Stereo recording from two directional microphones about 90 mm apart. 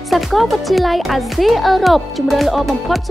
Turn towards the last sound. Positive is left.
turn(degrees=0)  # may be behind; listen again after turning